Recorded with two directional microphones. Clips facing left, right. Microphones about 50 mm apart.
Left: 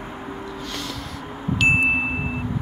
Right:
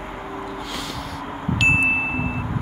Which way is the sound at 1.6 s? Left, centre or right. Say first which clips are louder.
Even; centre.